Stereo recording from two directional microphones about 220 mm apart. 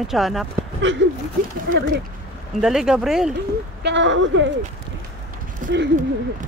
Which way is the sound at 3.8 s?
55° right (ahead or behind).